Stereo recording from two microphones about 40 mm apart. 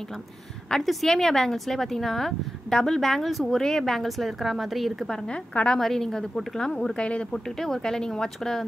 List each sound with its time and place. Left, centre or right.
0.7 s speech: centre
5.3 s a woman's voice: left
5.8 s speech: centre
7.0 s a woman's voice: left
7.3 s speech: centre